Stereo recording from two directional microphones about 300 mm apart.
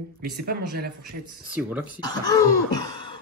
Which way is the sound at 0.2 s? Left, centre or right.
Right.